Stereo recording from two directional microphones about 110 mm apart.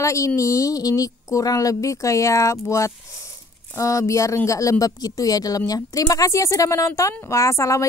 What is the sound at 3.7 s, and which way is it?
Speech, 30° left (ahead or behind).